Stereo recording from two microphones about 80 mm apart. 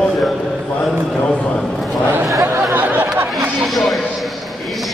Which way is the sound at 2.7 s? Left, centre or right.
Right.